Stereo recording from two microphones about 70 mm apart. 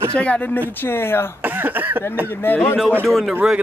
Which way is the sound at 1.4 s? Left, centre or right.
Right.